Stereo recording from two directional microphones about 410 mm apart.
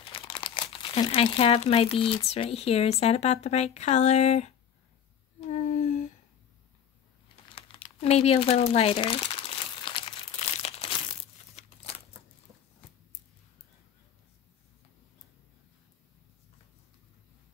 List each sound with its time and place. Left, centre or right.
0.0 s speech: centre
5.5 s a sound: centre
7.4 s crumpling: centre